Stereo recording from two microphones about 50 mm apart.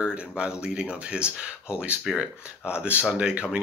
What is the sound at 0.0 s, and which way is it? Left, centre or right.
Speech, right.